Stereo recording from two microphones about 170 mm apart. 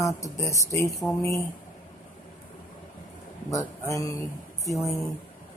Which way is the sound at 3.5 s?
20° left (ahead or behind).